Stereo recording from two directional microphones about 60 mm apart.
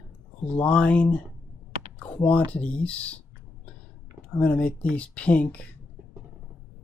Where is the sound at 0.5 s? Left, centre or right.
Left.